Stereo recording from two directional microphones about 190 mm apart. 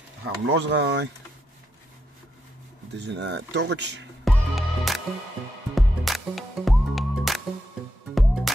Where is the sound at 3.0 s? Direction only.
60° right (ahead or behind).